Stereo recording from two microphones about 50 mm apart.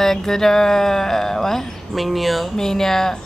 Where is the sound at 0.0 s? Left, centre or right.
Centre.